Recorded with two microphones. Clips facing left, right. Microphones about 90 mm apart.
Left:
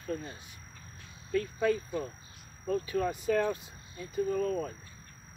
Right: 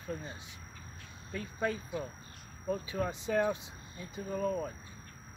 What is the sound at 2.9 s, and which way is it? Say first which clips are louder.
Speech: left 4 dB; 20° right (ahead or behind).